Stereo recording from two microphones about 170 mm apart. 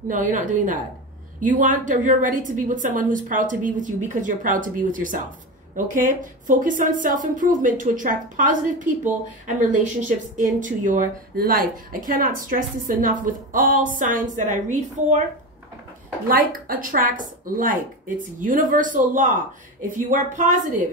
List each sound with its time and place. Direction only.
0.1 s a woman's voice: 50° right (ahead or behind)
16.3 s a woman's voice: 60° right (ahead or behind)